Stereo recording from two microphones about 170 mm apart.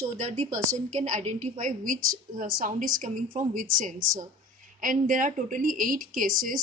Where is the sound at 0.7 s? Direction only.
45° right (ahead or behind).